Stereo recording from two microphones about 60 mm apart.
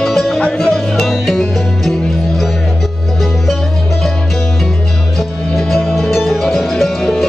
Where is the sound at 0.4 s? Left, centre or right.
Centre.